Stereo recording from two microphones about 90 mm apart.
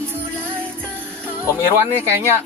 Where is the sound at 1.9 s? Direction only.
25° right (ahead or behind).